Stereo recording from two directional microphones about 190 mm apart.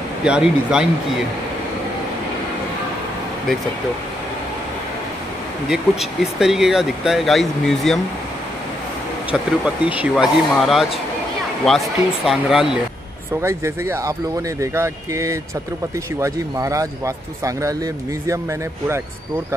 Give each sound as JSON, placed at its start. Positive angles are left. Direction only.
{"t": 0.2, "sound": "speech", "side_deg": -5}
{"t": 5.7, "sound": "speech", "side_deg": 0}
{"t": 9.3, "sound": "speech", "side_deg": -5}
{"t": 13.3, "sound": "speech", "side_deg": -15}